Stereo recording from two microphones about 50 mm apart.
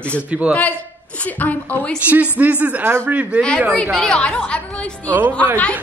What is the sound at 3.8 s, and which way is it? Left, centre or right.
A woman's voice, centre.